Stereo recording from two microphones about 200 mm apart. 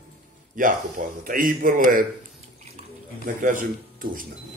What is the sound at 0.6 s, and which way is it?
A man's voice, 40° right (ahead or behind).